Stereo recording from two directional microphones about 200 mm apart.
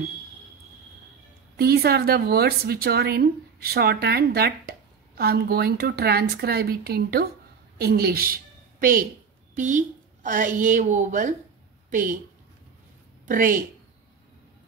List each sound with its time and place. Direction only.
1.6 s speech: 50° right (ahead or behind)
9.6 s a woman's voice: 40° right (ahead or behind)
13.3 s speech: 40° right (ahead or behind)